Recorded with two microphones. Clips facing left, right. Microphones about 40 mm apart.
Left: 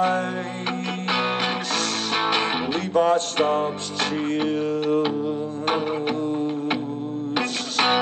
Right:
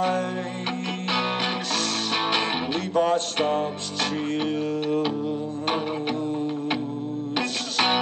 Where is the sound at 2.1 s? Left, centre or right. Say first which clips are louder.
Left 3 dB; left.